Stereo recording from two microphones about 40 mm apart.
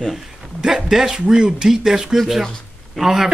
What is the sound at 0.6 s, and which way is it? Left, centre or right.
A man's voice, centre.